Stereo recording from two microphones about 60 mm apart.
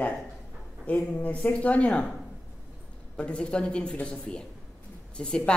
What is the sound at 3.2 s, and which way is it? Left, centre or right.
A woman's voice, centre.